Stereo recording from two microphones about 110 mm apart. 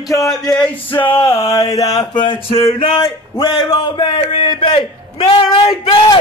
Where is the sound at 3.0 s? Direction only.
40° left (ahead or behind); by 5.7 s 55° left (ahead or behind).